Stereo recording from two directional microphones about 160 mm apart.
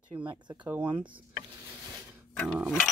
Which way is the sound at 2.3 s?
10° left (ahead or behind).